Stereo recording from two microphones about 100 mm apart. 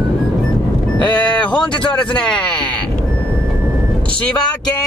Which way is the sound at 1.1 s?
10° left (ahead or behind).